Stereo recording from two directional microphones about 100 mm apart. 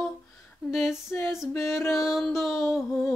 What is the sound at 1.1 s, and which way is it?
Music, 25° left (ahead or behind).